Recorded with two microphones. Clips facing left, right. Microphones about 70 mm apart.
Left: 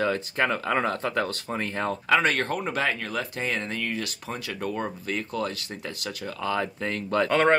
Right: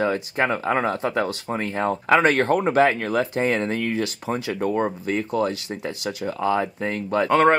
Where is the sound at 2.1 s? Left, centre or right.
Right.